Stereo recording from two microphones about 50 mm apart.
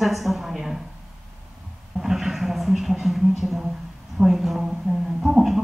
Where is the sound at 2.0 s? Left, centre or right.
Centre.